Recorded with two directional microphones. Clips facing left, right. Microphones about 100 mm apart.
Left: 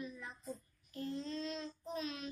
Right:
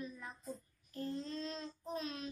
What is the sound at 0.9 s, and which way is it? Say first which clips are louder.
Child singing: even; 40° right (ahead or behind).